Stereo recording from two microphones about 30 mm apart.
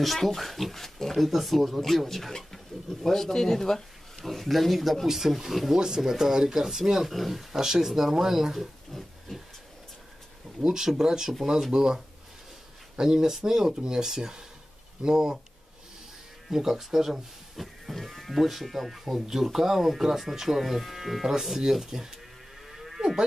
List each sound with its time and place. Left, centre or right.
0.0 s speech: centre
1.1 s speech: centre
4.2 s speech: centre
7.1 s speech: centre
7.5 s speech: centre
8.9 s hiss: centre
10.6 s speech: right
16.4 s speech: centre
17.6 s speech: centre
22.7 s livestock: centre
22.9 s moo: right